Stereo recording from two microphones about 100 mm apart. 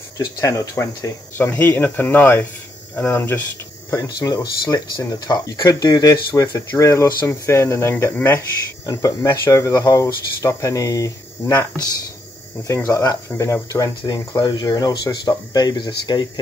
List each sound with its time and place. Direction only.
0.2 s speech: 30° left (ahead or behind)
3.9 s speech: 35° left (ahead or behind)
8.8 s speech: 35° left (ahead or behind)
12.6 s speech: 30° left (ahead or behind); by 16.3 s 45° left (ahead or behind)